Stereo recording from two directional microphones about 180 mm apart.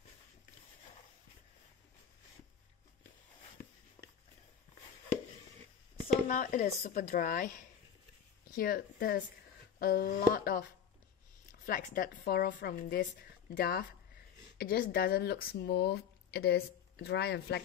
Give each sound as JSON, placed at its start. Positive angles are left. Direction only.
{"t": 4.0, "sound": "a sound", "side_deg": 10}
{"t": 6.2, "sound": "a woman's voice", "side_deg": 50}
{"t": 8.5, "sound": "a woman's voice", "side_deg": 55}